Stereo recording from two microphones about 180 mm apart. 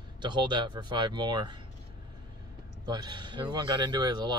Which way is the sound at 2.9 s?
20° right (ahead or behind).